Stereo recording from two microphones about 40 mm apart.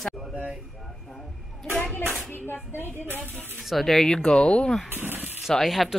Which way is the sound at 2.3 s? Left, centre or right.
Left.